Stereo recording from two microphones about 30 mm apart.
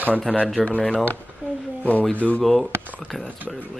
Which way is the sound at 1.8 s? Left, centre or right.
Left.